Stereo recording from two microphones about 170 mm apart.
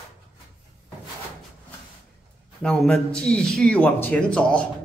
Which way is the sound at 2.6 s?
5° left (ahead or behind).